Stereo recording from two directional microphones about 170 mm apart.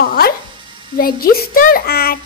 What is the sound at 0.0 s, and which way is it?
Music, 60° left (ahead or behind).